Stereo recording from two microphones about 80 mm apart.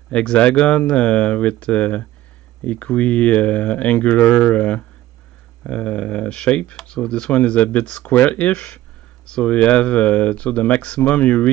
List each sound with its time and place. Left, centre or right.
0.1 s speech: centre